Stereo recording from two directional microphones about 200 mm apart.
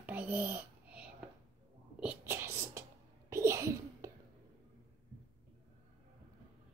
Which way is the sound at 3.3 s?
15° right (ahead or behind).